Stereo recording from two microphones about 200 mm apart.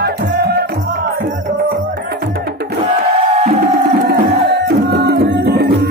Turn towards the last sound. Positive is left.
turn(degrees=-55)  # may be behind; listen again after turning